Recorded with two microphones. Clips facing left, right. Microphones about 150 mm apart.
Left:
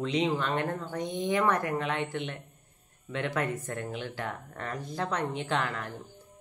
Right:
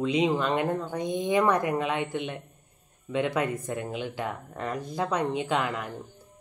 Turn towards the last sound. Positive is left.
turn(degrees=-15)  # may be behind; listen again after turning